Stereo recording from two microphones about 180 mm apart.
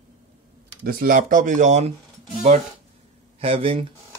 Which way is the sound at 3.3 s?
30° right (ahead or behind).